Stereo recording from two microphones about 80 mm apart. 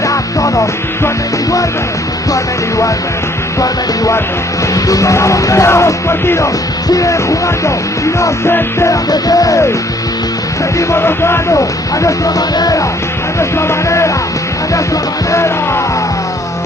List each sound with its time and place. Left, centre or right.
0.1 s music: left
4.7 s music: left
9.1 s music: left
10.8 s music: left
12.5 s music: left
13.4 s music: left